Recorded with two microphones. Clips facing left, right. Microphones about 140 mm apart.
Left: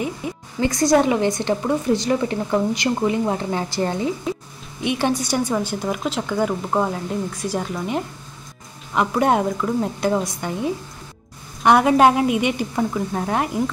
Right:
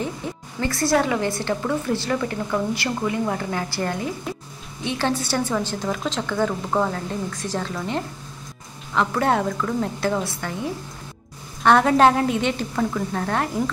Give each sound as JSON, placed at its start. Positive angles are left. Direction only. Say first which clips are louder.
{"t": 0.2, "sound": "a sound", "louder": "left 2 dB", "side_deg": 10}
{"t": 0.6, "sound": "a woman's voice", "louder": "left 4 dB", "side_deg": 15}
{"t": 11.6, "sound": "a woman's voice", "louder": "left 1 dB", "side_deg": 15}